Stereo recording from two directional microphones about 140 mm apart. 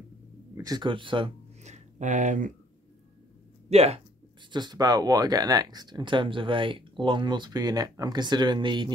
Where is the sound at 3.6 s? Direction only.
50° right (ahead or behind).